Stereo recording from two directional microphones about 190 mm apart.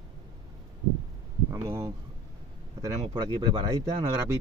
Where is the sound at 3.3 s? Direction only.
25° right (ahead or behind).